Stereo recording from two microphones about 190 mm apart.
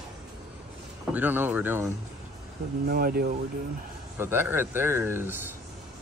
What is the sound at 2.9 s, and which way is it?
Speech, 50° right (ahead or behind).